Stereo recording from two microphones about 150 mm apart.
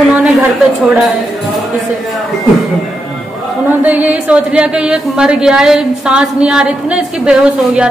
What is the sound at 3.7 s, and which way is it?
Speech, 10° right (ahead or behind).